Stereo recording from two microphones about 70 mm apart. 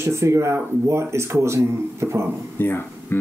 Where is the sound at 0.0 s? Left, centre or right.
Right.